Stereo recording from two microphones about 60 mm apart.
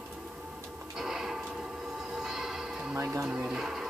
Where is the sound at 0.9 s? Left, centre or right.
Centre.